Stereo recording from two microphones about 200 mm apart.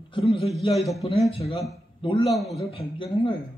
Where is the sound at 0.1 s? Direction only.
30° left (ahead or behind).